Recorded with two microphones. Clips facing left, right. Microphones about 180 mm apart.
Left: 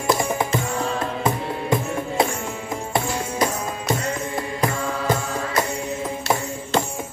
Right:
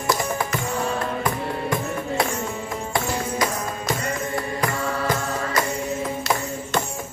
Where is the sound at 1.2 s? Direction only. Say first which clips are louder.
Left 1 dB; 25° left (ahead or behind).